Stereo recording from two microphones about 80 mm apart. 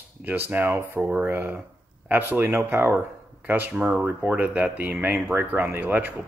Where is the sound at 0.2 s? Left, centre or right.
Right.